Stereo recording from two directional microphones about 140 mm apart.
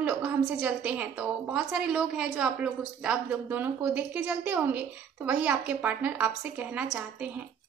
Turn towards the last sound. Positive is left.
turn(degrees=-5)  # may be behind; listen again after turning